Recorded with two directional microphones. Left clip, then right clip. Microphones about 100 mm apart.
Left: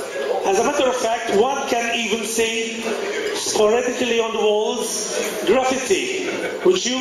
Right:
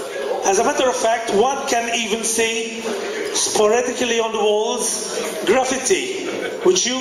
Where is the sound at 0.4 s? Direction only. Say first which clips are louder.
Right 2 dB; 25° right (ahead or behind).